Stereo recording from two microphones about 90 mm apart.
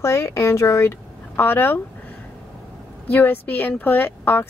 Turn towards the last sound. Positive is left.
turn(degrees=20)  # may be behind; listen again after turning